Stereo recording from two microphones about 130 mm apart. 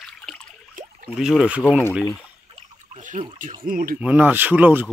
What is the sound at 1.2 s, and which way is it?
Speech, 5° right (ahead or behind).